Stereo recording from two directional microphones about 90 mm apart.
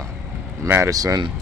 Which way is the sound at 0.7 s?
35° right (ahead or behind).